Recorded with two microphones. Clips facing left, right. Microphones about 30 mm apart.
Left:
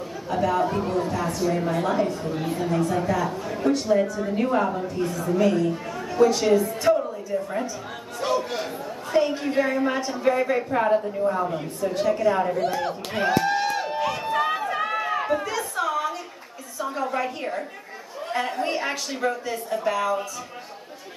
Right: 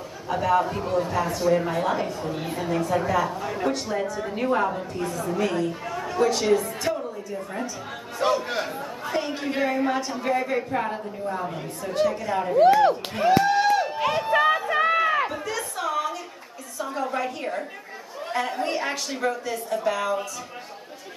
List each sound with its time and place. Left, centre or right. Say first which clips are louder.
0.3 s a woman's voice: even; centre
8.2 s speech: right 2 dB; centre
9.1 s a woman's voice: left 6 dB; centre
12.5 s speech: right 9 dB; right
13.4 s a sound: right 4 dB; centre
13.9 s run: right 2 dB; right
15.5 s a sound: left 2 dB; centre
16.7 s a woman's voice: left 1 dB; centre